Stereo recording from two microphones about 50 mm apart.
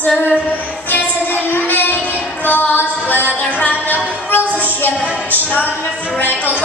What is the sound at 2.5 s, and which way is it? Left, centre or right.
Music, left.